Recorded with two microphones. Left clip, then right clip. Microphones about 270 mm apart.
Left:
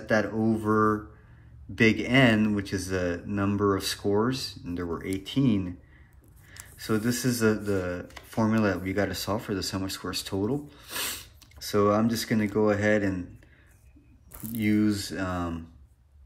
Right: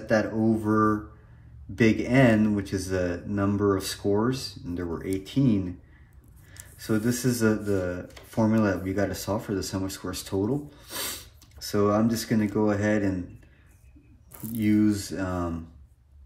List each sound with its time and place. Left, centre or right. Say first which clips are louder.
0.0 s speech: right 1 dB; centre
6.8 s speech: right 1 dB; centre
14.5 s speech: right 2 dB; centre